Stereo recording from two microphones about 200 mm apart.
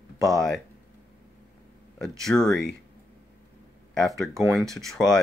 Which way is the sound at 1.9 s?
Centre (ahead or behind).